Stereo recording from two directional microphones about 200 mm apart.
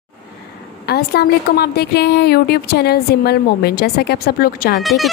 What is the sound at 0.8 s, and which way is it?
A woman's voice, 50° left (ahead or behind).